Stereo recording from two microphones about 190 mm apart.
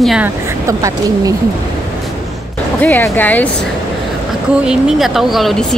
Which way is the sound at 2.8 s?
10° left (ahead or behind).